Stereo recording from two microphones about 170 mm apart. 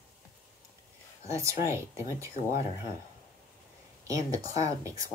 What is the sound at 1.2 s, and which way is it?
Speech, 15° right (ahead or behind).